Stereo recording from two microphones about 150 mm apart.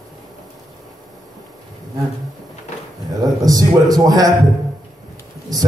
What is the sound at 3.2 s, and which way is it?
A man's voice, 25° right (ahead or behind).